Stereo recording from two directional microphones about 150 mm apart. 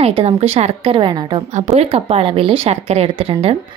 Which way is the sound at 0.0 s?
40° right (ahead or behind).